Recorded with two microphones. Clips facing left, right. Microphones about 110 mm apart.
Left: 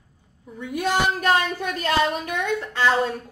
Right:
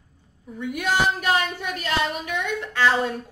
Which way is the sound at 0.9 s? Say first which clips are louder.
Left 1 dB; 40° left (ahead or behind).